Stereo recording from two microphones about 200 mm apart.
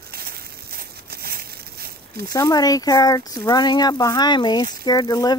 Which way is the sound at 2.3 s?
20° left (ahead or behind).